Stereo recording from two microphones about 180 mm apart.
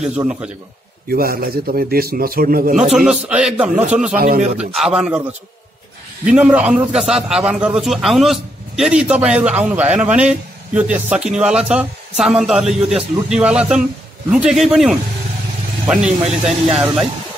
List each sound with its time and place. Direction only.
0.0 s a man's voice: 5° right (ahead or behind)
1.0 s a man's voice: 55° right (ahead or behind)
2.7 s a man's voice: 5° right (ahead or behind)
6.3 s a man's voice: 5° right (ahead or behind)